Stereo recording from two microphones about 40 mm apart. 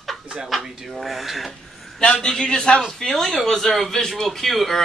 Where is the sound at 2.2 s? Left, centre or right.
Centre.